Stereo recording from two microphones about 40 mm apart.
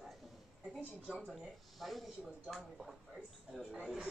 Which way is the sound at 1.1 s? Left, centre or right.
Centre.